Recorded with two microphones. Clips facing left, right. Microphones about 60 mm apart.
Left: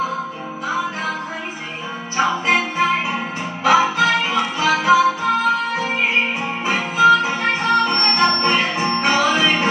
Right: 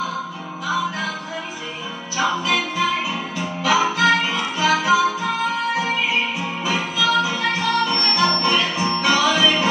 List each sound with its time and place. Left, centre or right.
2.1 s music: left